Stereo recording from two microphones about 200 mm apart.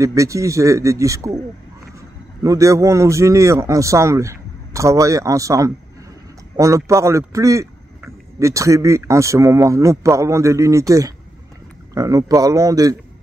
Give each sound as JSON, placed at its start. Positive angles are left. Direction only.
{"t": 0.0, "sound": "a man's voice", "side_deg": -15}